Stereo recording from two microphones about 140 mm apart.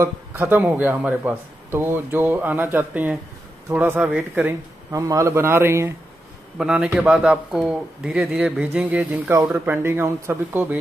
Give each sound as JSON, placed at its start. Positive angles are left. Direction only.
{"t": 0.0, "sound": "speech", "side_deg": -15}
{"t": 6.6, "sound": "speech", "side_deg": -5}